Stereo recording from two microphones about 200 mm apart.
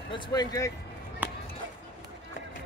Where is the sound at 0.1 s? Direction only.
20° left (ahead or behind).